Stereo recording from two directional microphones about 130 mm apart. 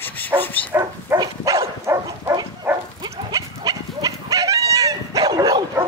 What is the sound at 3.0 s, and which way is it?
Livestock, 30° right (ahead or behind).